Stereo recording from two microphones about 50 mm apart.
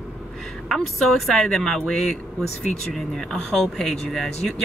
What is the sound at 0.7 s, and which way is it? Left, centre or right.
Speech, centre.